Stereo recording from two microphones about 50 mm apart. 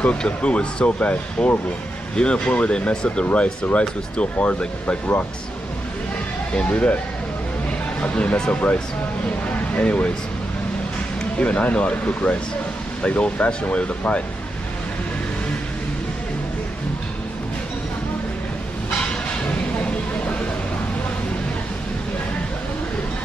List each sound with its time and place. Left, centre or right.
0.0 s speech: left
6.5 s speech: left
8.0 s speech: left
9.8 s speech: left
11.3 s speech: left